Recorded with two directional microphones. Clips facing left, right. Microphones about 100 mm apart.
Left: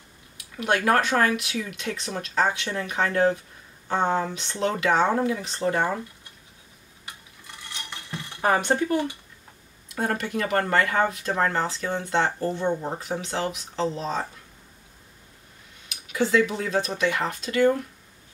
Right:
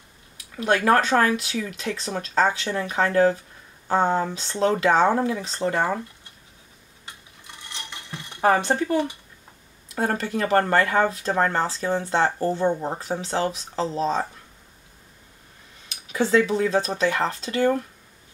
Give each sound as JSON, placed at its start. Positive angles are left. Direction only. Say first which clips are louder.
{"t": 0.6, "sound": "speech", "louder": "right 2 dB", "side_deg": -30}
{"t": 8.5, "sound": "speech", "louder": "right 2 dB", "side_deg": -25}
{"t": 15.9, "sound": "speech", "louder": "right 2 dB", "side_deg": -30}